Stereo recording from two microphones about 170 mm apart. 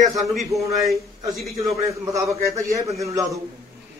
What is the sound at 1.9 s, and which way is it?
A man's voice, 20° right (ahead or behind).